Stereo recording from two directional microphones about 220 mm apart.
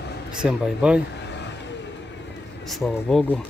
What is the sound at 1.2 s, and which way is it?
Vehicle, 50° left (ahead or behind).